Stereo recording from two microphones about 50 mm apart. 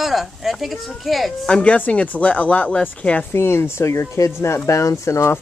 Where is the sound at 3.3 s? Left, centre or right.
Left.